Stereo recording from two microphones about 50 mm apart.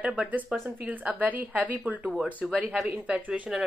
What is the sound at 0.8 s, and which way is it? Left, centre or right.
A woman's voice, right.